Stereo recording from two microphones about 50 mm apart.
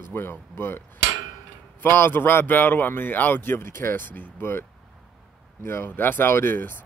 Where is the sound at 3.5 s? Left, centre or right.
Left.